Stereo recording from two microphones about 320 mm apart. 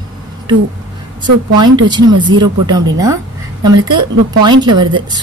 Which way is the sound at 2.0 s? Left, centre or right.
Right.